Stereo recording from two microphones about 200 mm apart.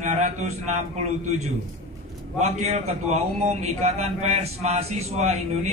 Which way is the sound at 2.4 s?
30° right (ahead or behind).